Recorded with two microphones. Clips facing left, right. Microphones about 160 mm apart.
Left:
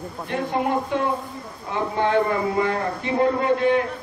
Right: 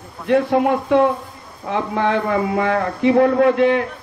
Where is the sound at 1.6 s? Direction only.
90° right.